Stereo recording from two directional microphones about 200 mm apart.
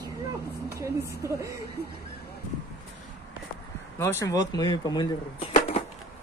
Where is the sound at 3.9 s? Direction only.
15° left (ahead or behind).